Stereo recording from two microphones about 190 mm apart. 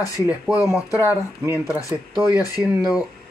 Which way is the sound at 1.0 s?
10° right (ahead or behind).